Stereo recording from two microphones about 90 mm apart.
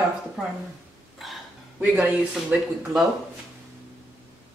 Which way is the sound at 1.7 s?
15° right (ahead or behind).